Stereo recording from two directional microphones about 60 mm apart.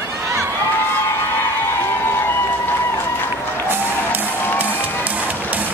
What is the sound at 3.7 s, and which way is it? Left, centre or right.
Music, right.